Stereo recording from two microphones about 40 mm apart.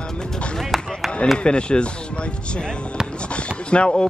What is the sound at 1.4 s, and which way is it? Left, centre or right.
Speech, left.